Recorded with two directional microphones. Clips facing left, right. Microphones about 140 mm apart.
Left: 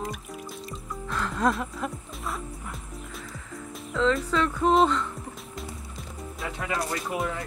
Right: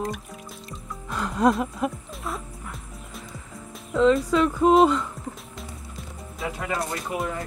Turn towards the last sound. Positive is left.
turn(degrees=0)  # may be behind; listen again after turning